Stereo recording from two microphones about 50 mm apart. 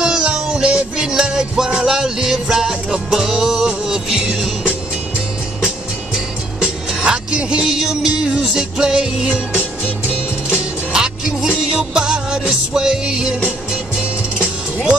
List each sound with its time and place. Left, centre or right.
0.0 s music: centre
6.1 s music: centre
10.9 s music: centre